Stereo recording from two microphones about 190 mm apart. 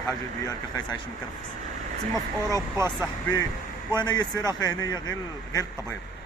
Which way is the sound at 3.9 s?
20° left (ahead or behind).